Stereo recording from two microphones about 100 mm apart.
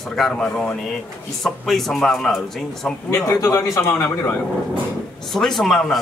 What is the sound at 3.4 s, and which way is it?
Speech, 25° left (ahead or behind).